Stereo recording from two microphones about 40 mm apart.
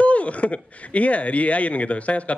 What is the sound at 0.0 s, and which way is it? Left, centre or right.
A man's voice, left.